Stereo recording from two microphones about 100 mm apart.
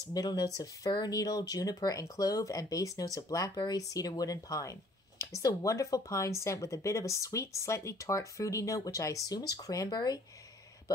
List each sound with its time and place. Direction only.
0.1 s speech: 40° left (ahead or behind)